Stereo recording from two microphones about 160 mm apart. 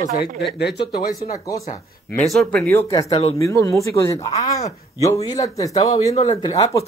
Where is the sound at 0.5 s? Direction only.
90° left.